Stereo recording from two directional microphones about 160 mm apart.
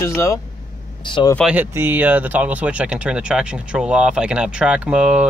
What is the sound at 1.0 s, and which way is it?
Speech, 30° left (ahead or behind).